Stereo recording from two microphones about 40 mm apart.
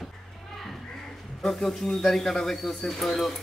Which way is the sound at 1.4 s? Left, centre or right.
Centre.